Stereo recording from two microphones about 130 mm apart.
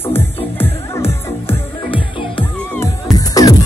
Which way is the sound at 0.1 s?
20° left (ahead or behind).